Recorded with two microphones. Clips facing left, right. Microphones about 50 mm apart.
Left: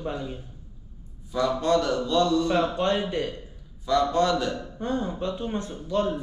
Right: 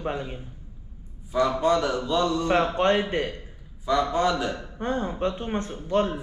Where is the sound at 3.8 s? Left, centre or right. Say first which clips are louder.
Left 1 dB; centre.